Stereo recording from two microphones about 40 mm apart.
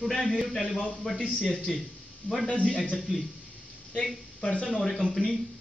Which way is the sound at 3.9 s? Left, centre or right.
Left.